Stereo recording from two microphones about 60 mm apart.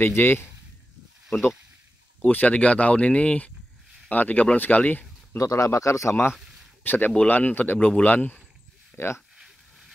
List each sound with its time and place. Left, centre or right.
0.0 s a man's voice: left
2.2 s speech: left
5.4 s speech: left
6.8 s speech: left
8.9 s speech: left
9.4 s a sound: centre